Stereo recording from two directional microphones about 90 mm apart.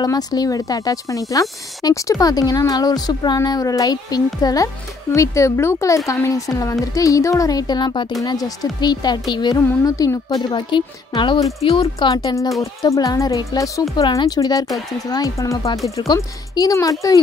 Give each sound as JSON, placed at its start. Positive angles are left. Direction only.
{"t": 0.0, "sound": "speech", "side_deg": 45}
{"t": 3.3, "sound": "speech", "side_deg": 40}
{"t": 5.1, "sound": "a woman's voice", "side_deg": 35}
{"t": 9.8, "sound": "a woman's voice", "side_deg": 40}
{"t": 10.5, "sound": "speech", "side_deg": 60}
{"t": 11.6, "sound": "speech", "side_deg": 80}
{"t": 12.1, "sound": "speech", "side_deg": 55}
{"t": 12.4, "sound": "a woman's voice", "side_deg": 40}